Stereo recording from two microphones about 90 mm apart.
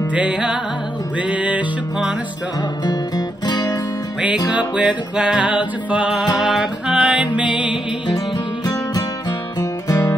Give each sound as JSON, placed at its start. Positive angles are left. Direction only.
{"t": 0.1, "sound": "music", "side_deg": -15}
{"t": 2.8, "sound": "music", "side_deg": 45}
{"t": 4.6, "sound": "music", "side_deg": -10}
{"t": 9.6, "sound": "music", "side_deg": 40}